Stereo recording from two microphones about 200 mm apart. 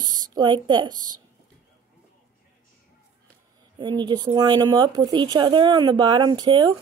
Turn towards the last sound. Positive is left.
turn(degrees=-25)  # may be behind; listen again after turning